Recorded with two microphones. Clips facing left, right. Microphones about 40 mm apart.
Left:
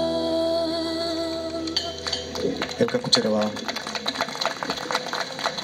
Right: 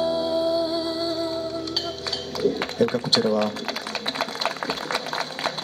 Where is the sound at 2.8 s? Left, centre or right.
Left.